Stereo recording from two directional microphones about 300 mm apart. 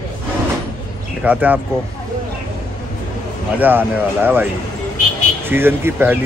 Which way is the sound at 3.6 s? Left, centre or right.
Centre.